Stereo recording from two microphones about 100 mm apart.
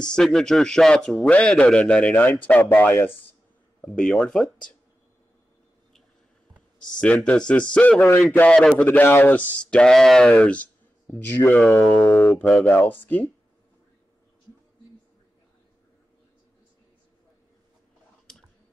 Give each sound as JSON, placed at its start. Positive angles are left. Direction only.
{"t": 0.0, "sound": "speech", "side_deg": 5}
{"t": 6.8, "sound": "speech", "side_deg": 10}
{"t": 8.8, "sound": "speech", "side_deg": 20}
{"t": 18.3, "sound": "a sound", "side_deg": 5}